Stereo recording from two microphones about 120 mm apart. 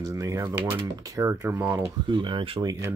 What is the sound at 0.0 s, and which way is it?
Speech, 25° right (ahead or behind).